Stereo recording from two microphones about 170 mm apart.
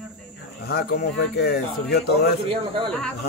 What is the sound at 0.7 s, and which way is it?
Speech, 65° left (ahead or behind).